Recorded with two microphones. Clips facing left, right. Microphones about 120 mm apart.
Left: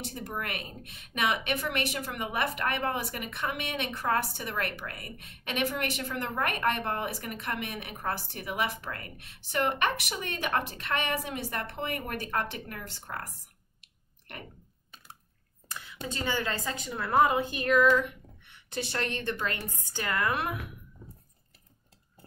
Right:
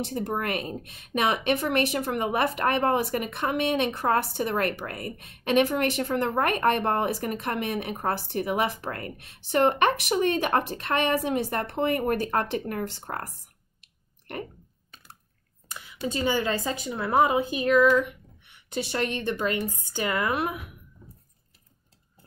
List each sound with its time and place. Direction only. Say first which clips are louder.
0.0 s a woman's voice: right 8 dB; 35° right (ahead or behind)
15.7 s a woman's voice: right 7 dB; 15° right (ahead or behind)